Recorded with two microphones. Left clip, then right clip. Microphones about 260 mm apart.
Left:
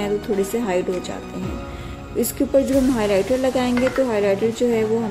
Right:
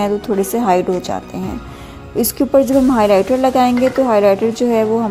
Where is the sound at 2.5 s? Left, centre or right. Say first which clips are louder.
Right 6 dB; right.